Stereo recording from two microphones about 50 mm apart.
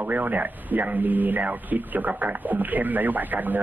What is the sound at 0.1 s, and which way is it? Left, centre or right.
Speech, right.